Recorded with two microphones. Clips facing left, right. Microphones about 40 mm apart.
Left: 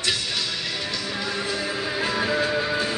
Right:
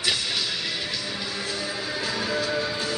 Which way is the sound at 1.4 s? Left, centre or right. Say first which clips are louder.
Left 3 dB; left.